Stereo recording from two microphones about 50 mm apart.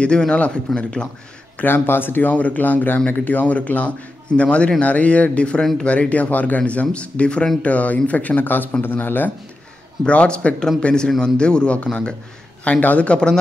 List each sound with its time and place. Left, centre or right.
0.0 s speech: left
1.6 s a man's voice: left
2.3 s speech: left
5.6 s a man's voice: centre
5.9 s a man's voice: left
10.0 s a man's voice: left